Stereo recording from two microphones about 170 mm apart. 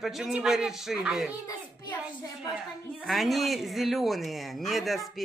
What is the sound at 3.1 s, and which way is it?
Speech, centre (ahead or behind).